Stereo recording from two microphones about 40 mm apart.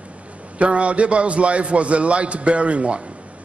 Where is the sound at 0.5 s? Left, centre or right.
Right.